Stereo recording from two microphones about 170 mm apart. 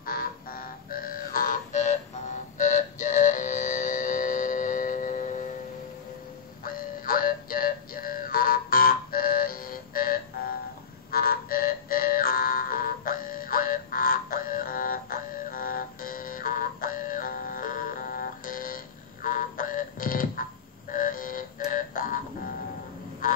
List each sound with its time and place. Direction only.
0.0 s music: 60° left (ahead or behind)
6.6 s music: 55° left (ahead or behind)